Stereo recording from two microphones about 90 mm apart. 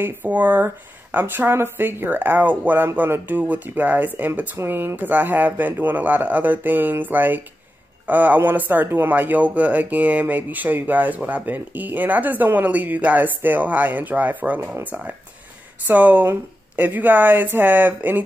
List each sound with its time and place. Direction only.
0.0 s speech: 20° right (ahead or behind)